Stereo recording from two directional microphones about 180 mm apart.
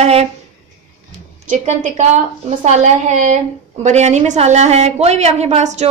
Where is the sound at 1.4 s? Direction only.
45° right (ahead or behind).